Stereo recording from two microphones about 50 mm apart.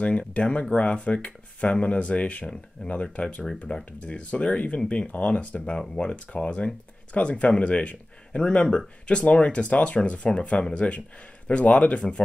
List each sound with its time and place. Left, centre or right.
0.0 s speech: left
3.4 s speech: centre
4.0 s speech: left